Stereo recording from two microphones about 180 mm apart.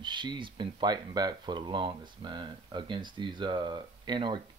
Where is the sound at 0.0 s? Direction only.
25° right (ahead or behind).